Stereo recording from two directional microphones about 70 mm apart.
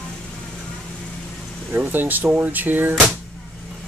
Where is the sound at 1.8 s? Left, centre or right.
Right.